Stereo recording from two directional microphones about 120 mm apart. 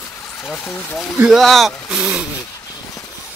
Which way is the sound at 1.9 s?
5° right (ahead or behind).